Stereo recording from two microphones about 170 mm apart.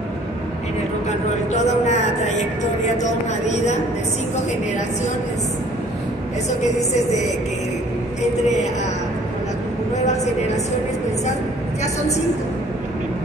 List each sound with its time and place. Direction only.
1.5 s a sound: 45° left (ahead or behind)
3.0 s speech: 45° left (ahead or behind)
6.6 s music: 40° left (ahead or behind)